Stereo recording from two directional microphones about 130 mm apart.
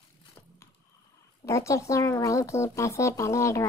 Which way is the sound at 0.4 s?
20° left (ahead or behind).